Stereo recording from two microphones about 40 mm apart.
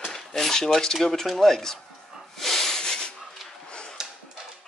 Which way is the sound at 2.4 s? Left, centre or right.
Centre.